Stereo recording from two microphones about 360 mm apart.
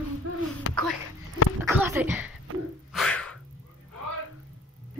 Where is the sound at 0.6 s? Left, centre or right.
Left.